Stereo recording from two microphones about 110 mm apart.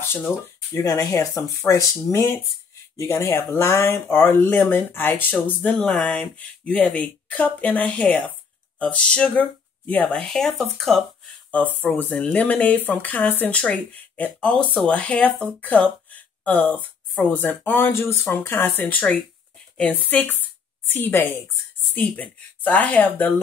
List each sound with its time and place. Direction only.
0.8 s speech: 35° left (ahead or behind); by 11.1 s centre (ahead or behind)
11.5 s a woman's voice: 15° left (ahead or behind)